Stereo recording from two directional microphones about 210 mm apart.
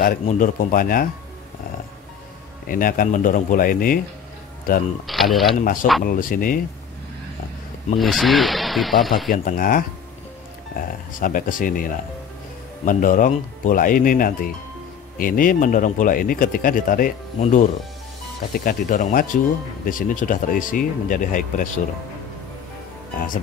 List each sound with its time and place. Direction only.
0.0 s speech: 40° left (ahead or behind)
2.7 s speech: 40° left (ahead or behind)
5.0 s speech: centre (ahead or behind)
5.6 s speech: 40° left (ahead or behind)
8.0 s speech: centre (ahead or behind)
9.3 s speech: 45° left (ahead or behind)